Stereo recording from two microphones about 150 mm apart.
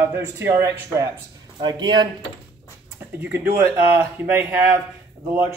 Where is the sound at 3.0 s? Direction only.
15° right (ahead or behind).